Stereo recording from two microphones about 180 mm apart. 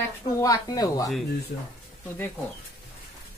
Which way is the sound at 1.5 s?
55° left (ahead or behind).